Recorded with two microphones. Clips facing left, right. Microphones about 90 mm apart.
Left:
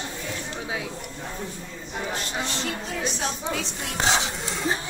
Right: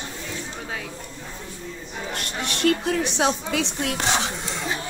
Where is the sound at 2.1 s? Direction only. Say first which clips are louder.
Right 1 dB; 65° right (ahead or behind).